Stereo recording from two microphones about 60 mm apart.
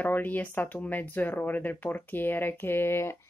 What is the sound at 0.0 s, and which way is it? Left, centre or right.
Speech, left.